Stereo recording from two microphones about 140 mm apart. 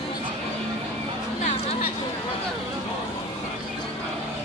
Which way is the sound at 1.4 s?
50° left (ahead or behind).